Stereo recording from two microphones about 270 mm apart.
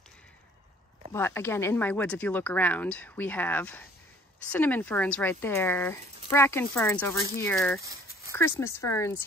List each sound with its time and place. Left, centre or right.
1.1 s speech: centre